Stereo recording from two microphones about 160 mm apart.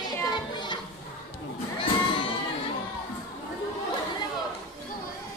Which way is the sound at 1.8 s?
30° left (ahead or behind).